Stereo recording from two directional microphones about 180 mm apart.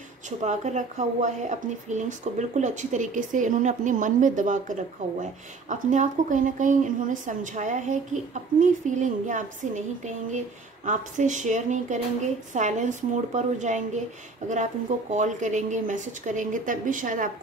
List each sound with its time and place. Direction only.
0.4 s speech: 40° right (ahead or behind)